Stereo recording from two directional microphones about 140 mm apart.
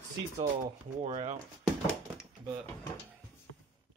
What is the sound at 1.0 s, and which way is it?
Speech, 45° right (ahead or behind).